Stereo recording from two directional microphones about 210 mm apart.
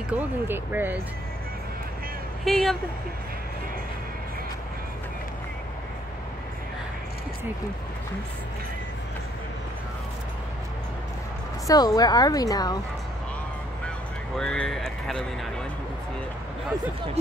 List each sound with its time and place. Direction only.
0.1 s speech: 10° right (ahead or behind)
2.4 s speech: centre (ahead or behind)
11.6 s speech: 15° left (ahead or behind)
13.8 s vehicle: 5° left (ahead or behind)